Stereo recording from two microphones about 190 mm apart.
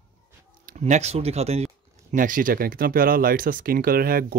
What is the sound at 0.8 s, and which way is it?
Speech, 35° right (ahead or behind).